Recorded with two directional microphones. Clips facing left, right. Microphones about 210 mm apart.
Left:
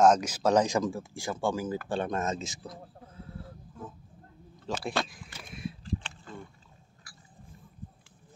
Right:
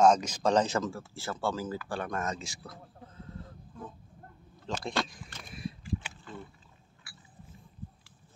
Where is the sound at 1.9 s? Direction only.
25° left (ahead or behind); by 6.1 s 10° right (ahead or behind).